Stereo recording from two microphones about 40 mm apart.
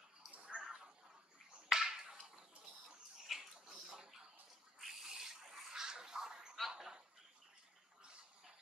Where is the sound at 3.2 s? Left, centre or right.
Centre.